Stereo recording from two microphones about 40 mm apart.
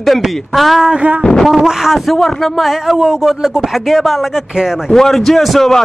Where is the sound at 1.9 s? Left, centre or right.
Centre.